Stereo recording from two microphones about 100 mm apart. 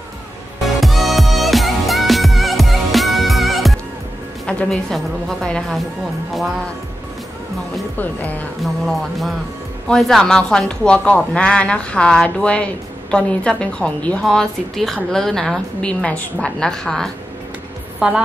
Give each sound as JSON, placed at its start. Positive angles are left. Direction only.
{"t": 0.7, "sound": "music", "side_deg": 0}
{"t": 4.5, "sound": "music", "side_deg": 10}
{"t": 4.9, "sound": "a woman's voice", "side_deg": 5}
{"t": 8.0, "sound": "speech", "side_deg": 15}
{"t": 9.8, "sound": "a woman's voice", "side_deg": 0}
{"t": 17.9, "sound": "a woman's voice", "side_deg": -5}